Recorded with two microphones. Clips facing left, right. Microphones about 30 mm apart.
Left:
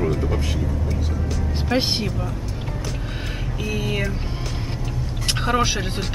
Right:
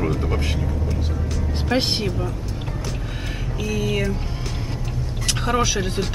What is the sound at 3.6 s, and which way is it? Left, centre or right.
Speech, centre.